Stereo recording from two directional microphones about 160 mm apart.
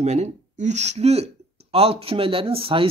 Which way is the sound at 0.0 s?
45° right (ahead or behind).